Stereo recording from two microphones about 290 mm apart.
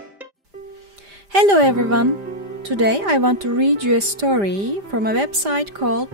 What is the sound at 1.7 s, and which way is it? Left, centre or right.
Music, right.